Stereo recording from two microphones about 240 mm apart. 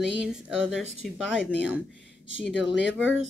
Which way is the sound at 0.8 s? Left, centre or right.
Right.